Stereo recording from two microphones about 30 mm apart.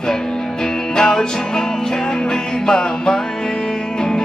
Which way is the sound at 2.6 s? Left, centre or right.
Left.